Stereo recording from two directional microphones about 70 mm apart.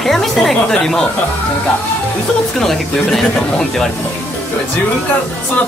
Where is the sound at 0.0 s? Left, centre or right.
Centre.